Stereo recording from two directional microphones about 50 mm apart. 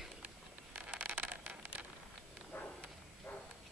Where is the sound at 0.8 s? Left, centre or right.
Right.